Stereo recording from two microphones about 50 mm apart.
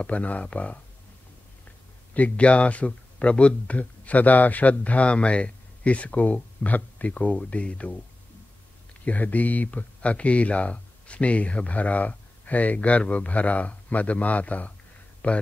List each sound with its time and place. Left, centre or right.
0.0 s speech: left
2.1 s speech: left
9.0 s speech: left